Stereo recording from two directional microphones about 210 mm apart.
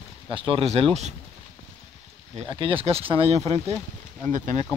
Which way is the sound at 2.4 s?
25° right (ahead or behind).